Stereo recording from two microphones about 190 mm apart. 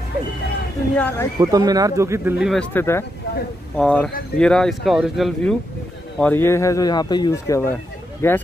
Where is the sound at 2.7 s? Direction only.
10° left (ahead or behind).